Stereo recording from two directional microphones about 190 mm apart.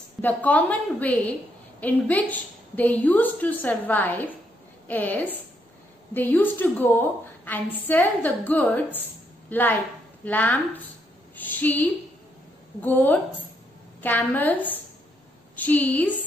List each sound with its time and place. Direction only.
0.2 s a woman's voice: 10° left (ahead or behind)